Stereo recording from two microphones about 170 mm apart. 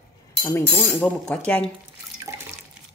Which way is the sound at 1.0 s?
5° left (ahead or behind).